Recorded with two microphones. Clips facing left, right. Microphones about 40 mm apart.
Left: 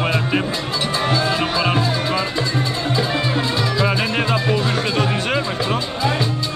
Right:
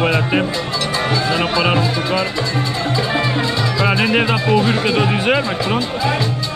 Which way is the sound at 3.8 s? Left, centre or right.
Centre.